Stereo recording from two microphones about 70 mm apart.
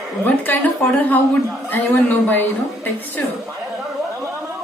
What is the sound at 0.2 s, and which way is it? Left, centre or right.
Speech, left.